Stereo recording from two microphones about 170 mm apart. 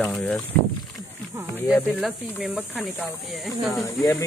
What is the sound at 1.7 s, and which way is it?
Speech, centre (ahead or behind).